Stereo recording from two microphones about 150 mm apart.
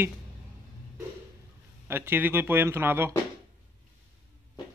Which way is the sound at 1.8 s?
15° right (ahead or behind).